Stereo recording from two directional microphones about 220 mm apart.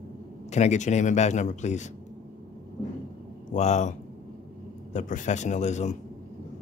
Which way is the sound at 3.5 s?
30° left (ahead or behind).